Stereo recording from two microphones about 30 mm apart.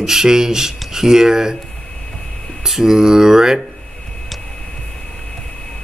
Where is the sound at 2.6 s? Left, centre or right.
Centre.